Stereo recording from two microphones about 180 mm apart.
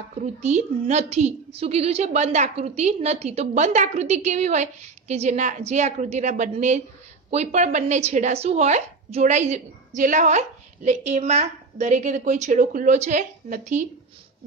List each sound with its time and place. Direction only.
0.2 s speech: 40° right (ahead or behind)